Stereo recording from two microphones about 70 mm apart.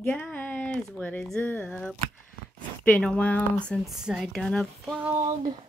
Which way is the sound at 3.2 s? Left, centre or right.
Left.